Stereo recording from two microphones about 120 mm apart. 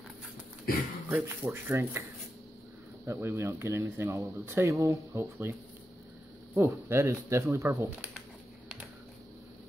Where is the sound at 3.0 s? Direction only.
25° right (ahead or behind).